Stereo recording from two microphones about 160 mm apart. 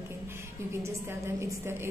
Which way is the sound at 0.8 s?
15° right (ahead or behind).